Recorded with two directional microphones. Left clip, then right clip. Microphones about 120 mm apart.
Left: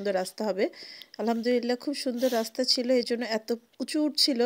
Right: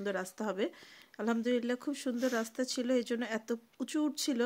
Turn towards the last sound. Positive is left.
turn(degrees=30)  # may be behind; listen again after turning